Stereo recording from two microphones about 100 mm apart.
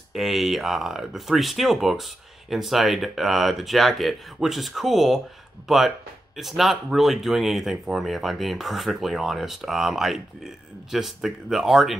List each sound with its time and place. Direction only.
0.1 s speech: centre (ahead or behind)